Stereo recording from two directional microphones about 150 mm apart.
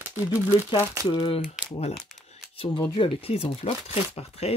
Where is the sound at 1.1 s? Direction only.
35° left (ahead or behind).